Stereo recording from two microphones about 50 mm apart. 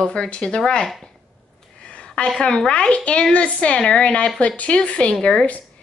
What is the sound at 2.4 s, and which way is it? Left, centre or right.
Speech, centre.